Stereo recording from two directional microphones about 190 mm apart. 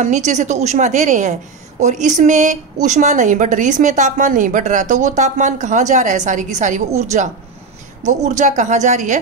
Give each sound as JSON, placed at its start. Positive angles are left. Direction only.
{"t": 0.0, "sound": "speech", "side_deg": -40}